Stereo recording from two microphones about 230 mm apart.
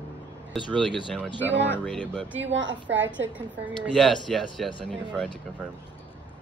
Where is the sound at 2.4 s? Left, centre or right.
Right.